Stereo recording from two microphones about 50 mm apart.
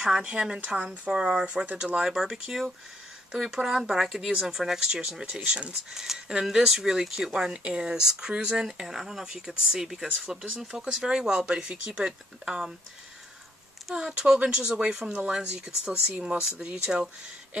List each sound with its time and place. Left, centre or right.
0.0 s speech: centre
7.5 s speech: right
8.8 s speech: centre
9.2 s speech: centre
13.9 s speech: right